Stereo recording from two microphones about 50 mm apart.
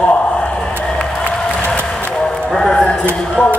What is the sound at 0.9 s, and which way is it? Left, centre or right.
Applause, left.